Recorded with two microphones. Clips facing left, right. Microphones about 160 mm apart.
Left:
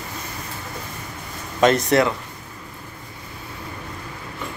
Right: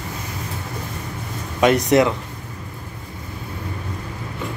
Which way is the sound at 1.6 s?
15° right (ahead or behind).